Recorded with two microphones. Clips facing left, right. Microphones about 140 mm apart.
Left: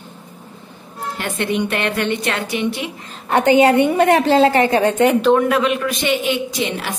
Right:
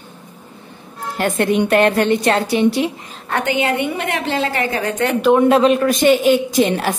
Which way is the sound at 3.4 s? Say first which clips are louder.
Left 7 dB; 40° left (ahead or behind).